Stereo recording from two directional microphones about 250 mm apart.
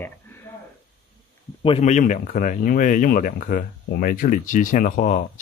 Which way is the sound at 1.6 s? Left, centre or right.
Left.